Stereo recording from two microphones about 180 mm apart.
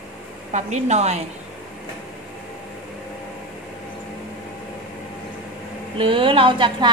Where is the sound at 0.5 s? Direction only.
40° right (ahead or behind).